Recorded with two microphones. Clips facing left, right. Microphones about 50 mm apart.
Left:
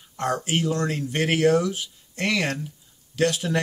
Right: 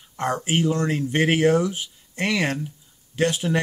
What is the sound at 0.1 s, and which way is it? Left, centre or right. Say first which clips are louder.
Speech: right 1 dB; right.